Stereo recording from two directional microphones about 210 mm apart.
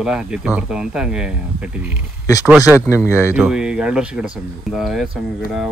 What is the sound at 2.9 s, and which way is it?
Speech, 10° left (ahead or behind).